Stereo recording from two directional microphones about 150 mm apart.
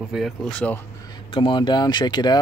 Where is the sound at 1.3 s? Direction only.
30° left (ahead or behind).